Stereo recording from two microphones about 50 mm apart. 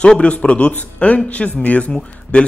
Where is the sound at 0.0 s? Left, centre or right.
Left.